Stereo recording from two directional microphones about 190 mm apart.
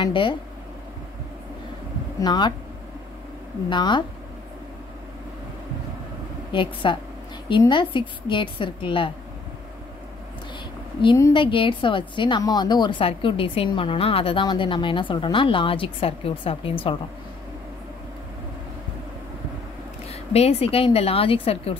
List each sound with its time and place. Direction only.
0.0 s a woman's voice: 25° left (ahead or behind)
2.1 s a woman's voice: 20° left (ahead or behind)
3.7 s a woman's voice: 25° left (ahead or behind)
6.5 s a woman's voice: 25° left (ahead or behind)
11.0 s a woman's voice: 20° left (ahead or behind)
20.1 s a woman's voice: 35° left (ahead or behind)